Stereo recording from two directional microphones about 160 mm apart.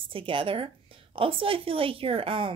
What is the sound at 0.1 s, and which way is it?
A woman's voice, 30° right (ahead or behind).